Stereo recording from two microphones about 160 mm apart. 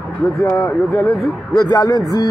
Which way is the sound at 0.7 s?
5° left (ahead or behind).